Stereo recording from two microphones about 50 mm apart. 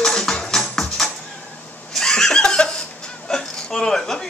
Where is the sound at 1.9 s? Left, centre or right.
Centre.